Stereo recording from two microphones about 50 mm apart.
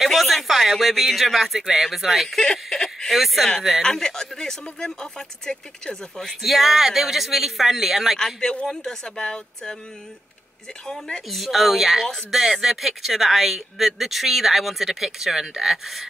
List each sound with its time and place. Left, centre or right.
0.0 s speech: centre
2.4 s a sound: centre
3.1 s speech: centre
3.8 s speech: centre
6.2 s speech: centre
8.4 s speech: centre
10.9 s speech: centre
11.2 s speech: centre